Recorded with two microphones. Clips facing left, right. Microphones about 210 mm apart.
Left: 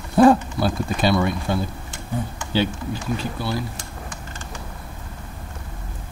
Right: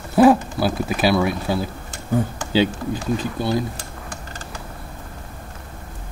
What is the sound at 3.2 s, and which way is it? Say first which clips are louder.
Speech: right 4 dB; 20° right (ahead or behind).